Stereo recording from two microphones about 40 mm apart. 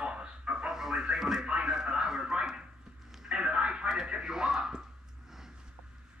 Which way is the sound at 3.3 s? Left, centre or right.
Right.